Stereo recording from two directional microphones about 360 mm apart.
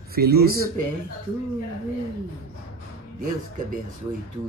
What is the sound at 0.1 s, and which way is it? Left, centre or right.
Speech, right.